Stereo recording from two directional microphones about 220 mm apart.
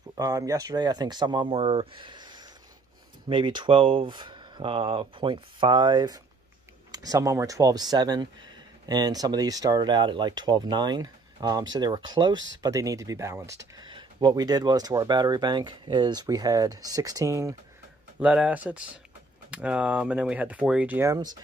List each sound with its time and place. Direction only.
0.2 s speech: 15° right (ahead or behind)